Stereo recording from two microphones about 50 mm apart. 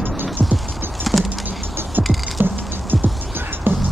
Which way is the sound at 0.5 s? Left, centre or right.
Centre.